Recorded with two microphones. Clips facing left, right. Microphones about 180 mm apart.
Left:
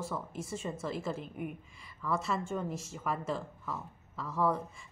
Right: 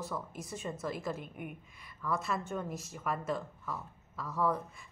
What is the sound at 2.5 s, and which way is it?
Speech, centre (ahead or behind).